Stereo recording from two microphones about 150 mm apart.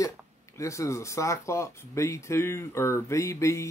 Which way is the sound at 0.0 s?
20° left (ahead or behind).